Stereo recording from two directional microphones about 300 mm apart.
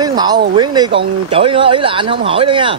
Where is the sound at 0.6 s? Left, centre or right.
Centre.